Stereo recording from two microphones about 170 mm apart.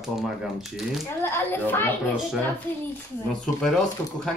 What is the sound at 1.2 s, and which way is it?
Speech, 15° left (ahead or behind).